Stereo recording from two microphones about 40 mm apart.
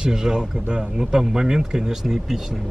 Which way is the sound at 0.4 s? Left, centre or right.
Right.